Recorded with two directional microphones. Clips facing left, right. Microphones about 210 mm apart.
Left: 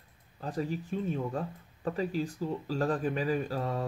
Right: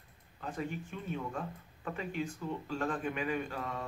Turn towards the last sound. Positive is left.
turn(degrees=35)  # may be behind; listen again after turning